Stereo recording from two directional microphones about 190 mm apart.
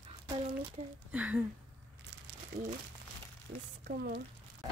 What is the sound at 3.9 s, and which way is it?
Speech, 55° right (ahead or behind).